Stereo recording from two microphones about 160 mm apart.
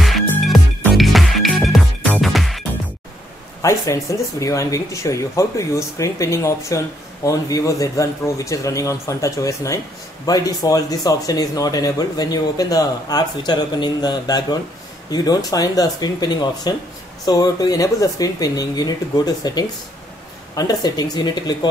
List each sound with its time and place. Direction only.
0.0 s music: centre (ahead or behind)
3.6 s speech: 20° left (ahead or behind)